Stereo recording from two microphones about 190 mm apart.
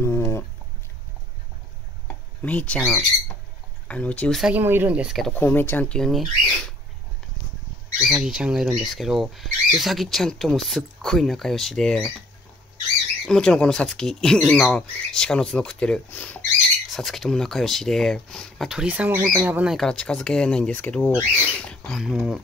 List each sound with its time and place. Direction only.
0.0 s a sound: 15° left (ahead or behind)
2.4 s speech: 5° left (ahead or behind)
5.4 s speech: 10° left (ahead or behind)
8.0 s speech: 5° right (ahead or behind)
13.2 s speech: 5° left (ahead or behind)